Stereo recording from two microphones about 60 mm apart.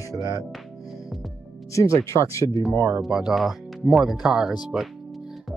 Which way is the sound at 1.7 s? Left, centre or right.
Left.